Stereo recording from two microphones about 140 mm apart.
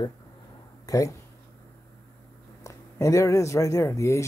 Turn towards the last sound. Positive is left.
turn(degrees=20)  # may be behind; listen again after turning